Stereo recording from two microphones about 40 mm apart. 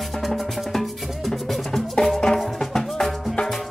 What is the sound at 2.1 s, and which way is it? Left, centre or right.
Music, centre.